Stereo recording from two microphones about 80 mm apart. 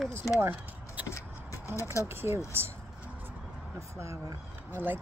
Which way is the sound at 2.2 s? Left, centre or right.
Right.